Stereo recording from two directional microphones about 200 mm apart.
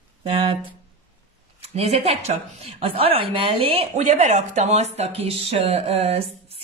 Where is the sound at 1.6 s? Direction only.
30° right (ahead or behind).